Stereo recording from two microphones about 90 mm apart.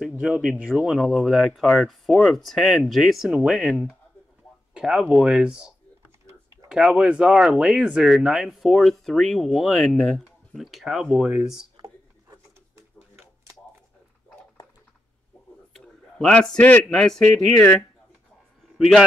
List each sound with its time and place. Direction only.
0.2 s speech: 5° right (ahead or behind)
6.7 s speech: 10° right (ahead or behind)
11.8 s a sound: 40° right (ahead or behind)
15.7 s a sound: 5° left (ahead or behind)
16.9 s speech: 5° left (ahead or behind)
17.6 s speech: 15° left (ahead or behind)